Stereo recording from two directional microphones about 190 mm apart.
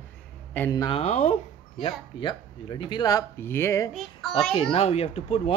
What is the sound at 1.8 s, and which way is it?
Speech, 25° left (ahead or behind).